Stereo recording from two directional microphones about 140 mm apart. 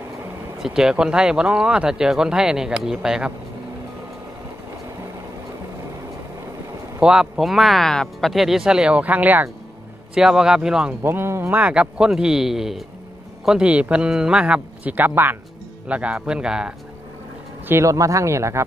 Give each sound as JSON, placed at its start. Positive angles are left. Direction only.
{"t": 0.6, "sound": "speech", "side_deg": -5}
{"t": 7.0, "sound": "speech", "side_deg": -5}
{"t": 11.0, "sound": "speech", "side_deg": -15}
{"t": 17.6, "sound": "speech", "side_deg": -20}